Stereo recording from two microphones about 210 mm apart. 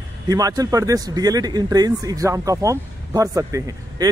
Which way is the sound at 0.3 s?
15° right (ahead or behind).